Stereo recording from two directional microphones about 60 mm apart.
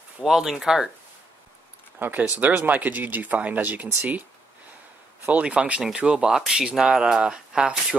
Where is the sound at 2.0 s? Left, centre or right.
Right.